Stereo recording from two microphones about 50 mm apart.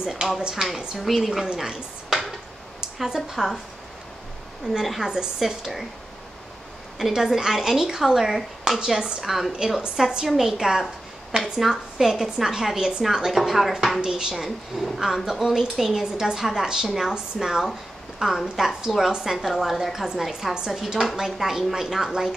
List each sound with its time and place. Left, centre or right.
0.0 s a woman's voice: centre
0.9 s speech: centre
3.3 s a woman's voice: centre
4.8 s speech: centre
7.0 s a woman's voice: centre
14.0 s a woman's voice: centre
14.3 s a woman's voice: centre